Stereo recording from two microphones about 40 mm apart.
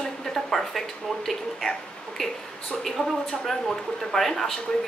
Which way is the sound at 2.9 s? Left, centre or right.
Centre.